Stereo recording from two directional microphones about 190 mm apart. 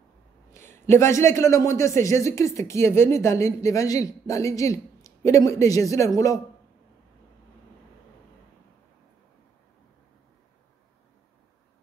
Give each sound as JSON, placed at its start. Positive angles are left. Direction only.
{"t": 0.5, "sound": "a man's voice", "side_deg": 15}